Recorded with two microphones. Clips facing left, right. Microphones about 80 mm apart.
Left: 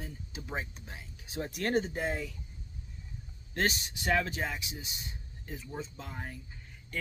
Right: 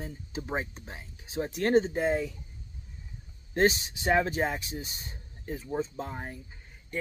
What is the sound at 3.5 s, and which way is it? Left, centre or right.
Speech, right.